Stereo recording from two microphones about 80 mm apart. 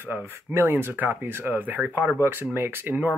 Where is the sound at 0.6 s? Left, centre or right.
Right.